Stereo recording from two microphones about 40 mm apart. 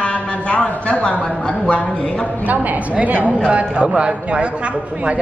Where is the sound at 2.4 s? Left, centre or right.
Right.